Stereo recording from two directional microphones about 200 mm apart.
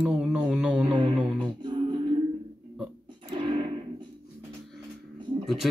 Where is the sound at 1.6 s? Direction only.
25° right (ahead or behind).